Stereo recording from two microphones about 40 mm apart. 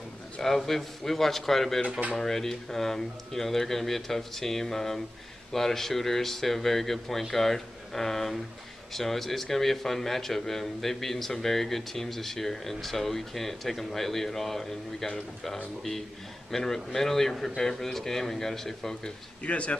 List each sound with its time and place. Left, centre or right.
0.4 s a man's voice: centre
19.4 s speech: left